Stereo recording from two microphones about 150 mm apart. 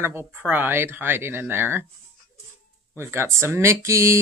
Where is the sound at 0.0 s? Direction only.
15° right (ahead or behind).